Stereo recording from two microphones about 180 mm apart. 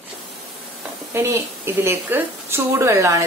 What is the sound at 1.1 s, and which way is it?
A woman's voice, 15° right (ahead or behind).